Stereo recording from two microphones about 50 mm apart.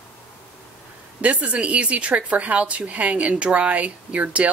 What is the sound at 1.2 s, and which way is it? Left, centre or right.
Speech, right.